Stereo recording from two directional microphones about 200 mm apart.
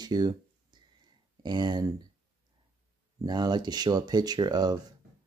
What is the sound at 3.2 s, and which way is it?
Speech, 20° right (ahead or behind).